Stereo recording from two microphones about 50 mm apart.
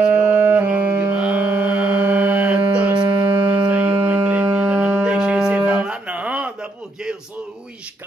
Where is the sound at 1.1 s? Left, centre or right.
Right.